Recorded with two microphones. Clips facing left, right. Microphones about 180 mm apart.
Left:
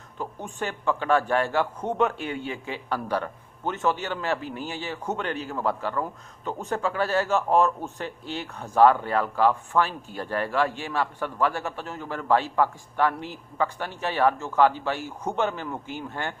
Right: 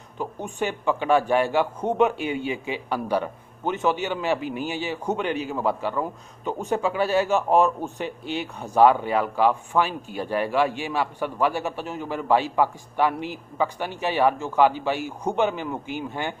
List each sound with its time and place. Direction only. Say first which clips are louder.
0.6 s speech: right 3 dB; 15° right (ahead or behind)